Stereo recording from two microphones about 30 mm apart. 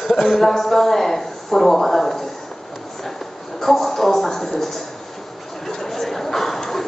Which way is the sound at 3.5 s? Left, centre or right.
Centre.